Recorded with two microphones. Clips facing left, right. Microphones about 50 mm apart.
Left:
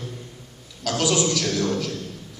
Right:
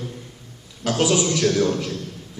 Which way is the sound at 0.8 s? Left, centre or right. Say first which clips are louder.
Right 2 dB; right.